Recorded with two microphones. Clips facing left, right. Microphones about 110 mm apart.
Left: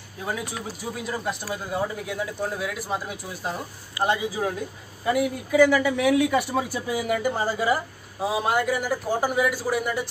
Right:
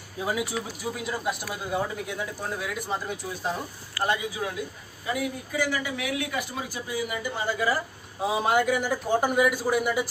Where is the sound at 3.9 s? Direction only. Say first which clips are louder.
Left 3 dB; 25° left (ahead or behind).